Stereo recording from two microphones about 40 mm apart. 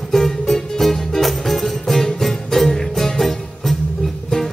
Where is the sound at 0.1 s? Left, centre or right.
Centre.